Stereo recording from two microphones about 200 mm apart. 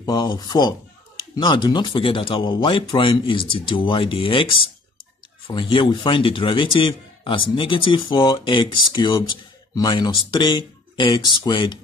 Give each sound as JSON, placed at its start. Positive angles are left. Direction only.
{"t": 0.0, "sound": "speech", "side_deg": 20}